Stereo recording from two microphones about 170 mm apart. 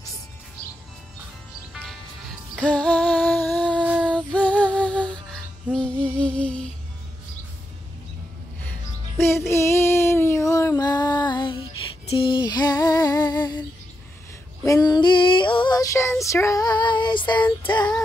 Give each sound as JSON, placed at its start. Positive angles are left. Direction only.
{"t": 1.7, "sound": "music", "side_deg": 0}
{"t": 9.5, "sound": "child singing", "side_deg": 15}
{"t": 12.1, "sound": "music", "side_deg": 30}
{"t": 14.6, "sound": "female singing", "side_deg": 20}